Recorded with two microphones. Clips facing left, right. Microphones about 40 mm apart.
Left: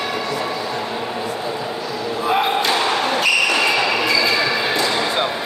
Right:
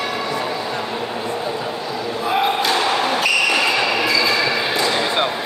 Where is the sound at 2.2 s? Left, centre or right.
Centre.